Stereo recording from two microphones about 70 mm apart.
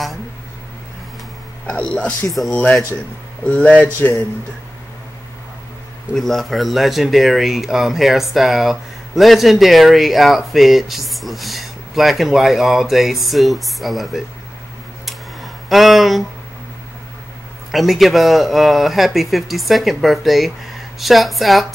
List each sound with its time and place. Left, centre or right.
1.7 s speech: centre
3.4 s speech: centre
3.8 s a man's voice: left
6.1 s speech: centre
15.0 s a sound: centre
17.6 s speech: centre